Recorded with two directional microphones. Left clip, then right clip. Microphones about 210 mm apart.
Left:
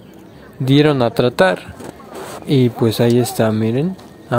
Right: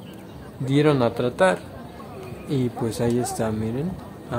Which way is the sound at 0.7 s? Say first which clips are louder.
Left 6 dB; 40° left (ahead or behind).